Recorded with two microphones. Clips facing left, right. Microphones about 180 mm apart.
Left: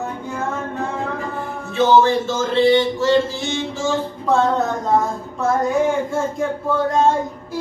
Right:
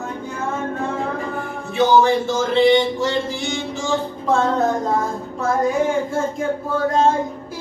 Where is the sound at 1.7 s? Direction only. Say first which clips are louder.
Even; 15° right (ahead or behind).